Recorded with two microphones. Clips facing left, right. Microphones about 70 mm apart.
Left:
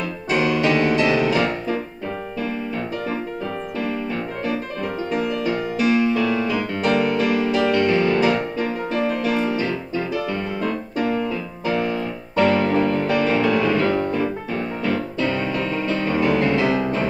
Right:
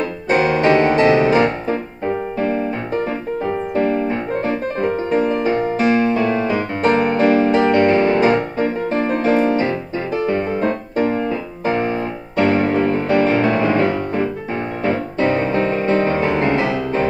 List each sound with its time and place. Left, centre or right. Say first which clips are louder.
0.3 s music: right 5 dB; right
3.7 s music: right 8 dB; right